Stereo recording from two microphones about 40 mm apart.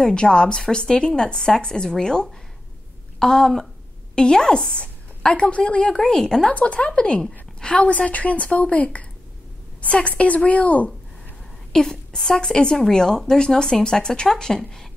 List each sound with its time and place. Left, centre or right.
0.0 s a woman's voice: left
6.0 s a woman's voice: centre
6.5 s a woman's voice: left
11.7 s a woman's voice: centre